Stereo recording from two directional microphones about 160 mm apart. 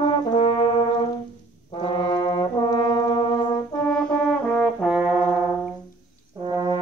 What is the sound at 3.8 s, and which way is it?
Brass instrument, 5° left (ahead or behind).